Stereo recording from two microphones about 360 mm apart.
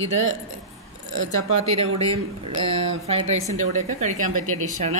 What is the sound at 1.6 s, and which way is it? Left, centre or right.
A woman's voice, centre.